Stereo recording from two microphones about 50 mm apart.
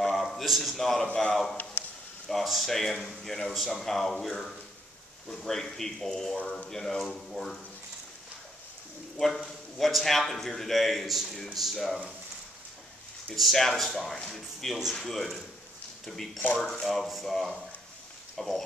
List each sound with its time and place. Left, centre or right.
0.1 s a sound: centre
1.0 s a man's voice: left
1.3 s a man's voice: centre
7.0 s a man's voice: centre
9.8 s a man's voice: centre
13.3 s a man's voice: centre
16.8 s a man's voice: centre